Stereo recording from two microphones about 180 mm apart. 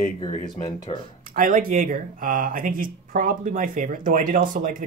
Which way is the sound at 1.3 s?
50° right (ahead or behind).